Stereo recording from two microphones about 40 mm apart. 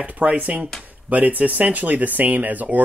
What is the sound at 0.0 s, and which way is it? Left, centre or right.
Speech, right.